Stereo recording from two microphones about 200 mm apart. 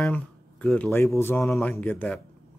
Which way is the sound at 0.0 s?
5° left (ahead or behind).